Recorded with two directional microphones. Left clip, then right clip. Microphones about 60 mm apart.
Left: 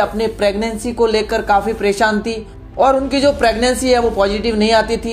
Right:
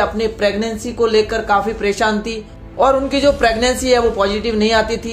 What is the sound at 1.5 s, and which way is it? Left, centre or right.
A woman's voice, left.